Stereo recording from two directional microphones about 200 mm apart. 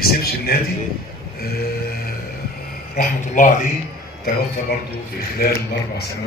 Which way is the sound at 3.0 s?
40° left (ahead or behind).